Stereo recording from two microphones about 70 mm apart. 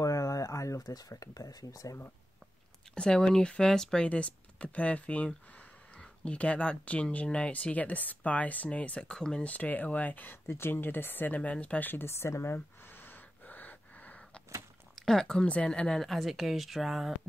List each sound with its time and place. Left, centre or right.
0.0 s a sound: left
2.9 s speech: centre
9.5 s speech: left
11.9 s speech: left
12.5 s gasp: left
15.0 s speech: centre
16.0 s speech: centre